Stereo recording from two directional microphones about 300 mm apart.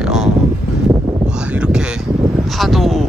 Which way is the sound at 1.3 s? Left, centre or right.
Centre.